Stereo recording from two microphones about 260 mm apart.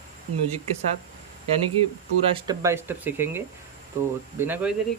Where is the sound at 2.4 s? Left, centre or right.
Centre.